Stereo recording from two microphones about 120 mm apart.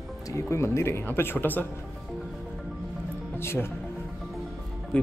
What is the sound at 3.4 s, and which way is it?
Speech, 20° left (ahead or behind).